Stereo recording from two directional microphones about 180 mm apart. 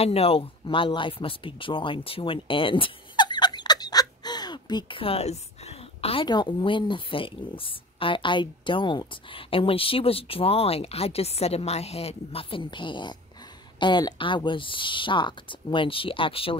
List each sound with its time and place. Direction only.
0.0 s speech: 35° left (ahead or behind)